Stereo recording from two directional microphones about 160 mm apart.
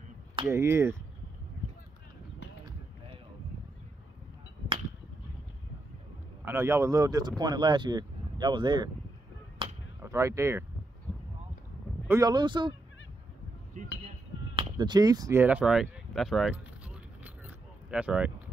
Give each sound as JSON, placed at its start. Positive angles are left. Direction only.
{"t": 0.5, "sound": "speech", "side_deg": -15}
{"t": 6.4, "sound": "speech", "side_deg": -15}
{"t": 9.6, "sound": "a sound", "side_deg": -30}
{"t": 10.0, "sound": "speech", "side_deg": -20}
{"t": 12.1, "sound": "speech", "side_deg": -25}
{"t": 14.5, "sound": "speech", "side_deg": -30}
{"t": 15.4, "sound": "speech", "side_deg": -5}
{"t": 16.5, "sound": "keys jangling", "side_deg": -10}